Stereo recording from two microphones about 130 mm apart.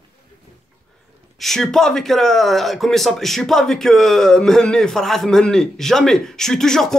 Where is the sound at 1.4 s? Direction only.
Centre (ahead or behind).